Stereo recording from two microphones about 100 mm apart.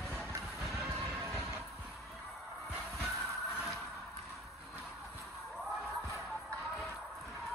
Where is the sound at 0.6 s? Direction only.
Centre (ahead or behind).